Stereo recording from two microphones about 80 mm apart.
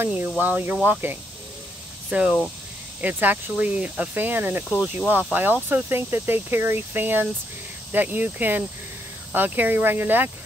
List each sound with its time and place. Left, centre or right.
0.4 s speech: right
2.0 s speech: centre